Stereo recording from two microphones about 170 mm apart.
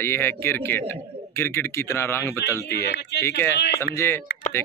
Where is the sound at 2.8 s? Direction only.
80° left.